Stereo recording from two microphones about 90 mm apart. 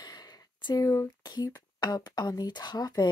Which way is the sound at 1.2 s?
50° left (ahead or behind).